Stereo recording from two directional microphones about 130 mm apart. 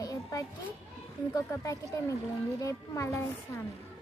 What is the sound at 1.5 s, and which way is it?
Speech, 25° left (ahead or behind).